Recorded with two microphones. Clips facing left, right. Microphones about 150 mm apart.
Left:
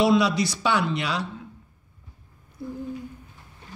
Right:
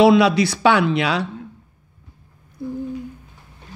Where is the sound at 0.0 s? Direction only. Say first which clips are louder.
Right 7 dB; 70° right (ahead or behind).